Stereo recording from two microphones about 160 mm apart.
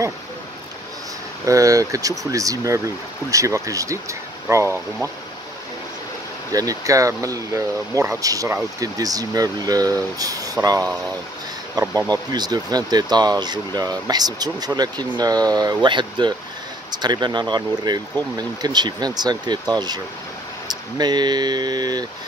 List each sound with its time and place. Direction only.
1.4 s speech: 20° right (ahead or behind)
6.5 s speech: 20° right (ahead or behind)
20.6 s a sound: 25° right (ahead or behind)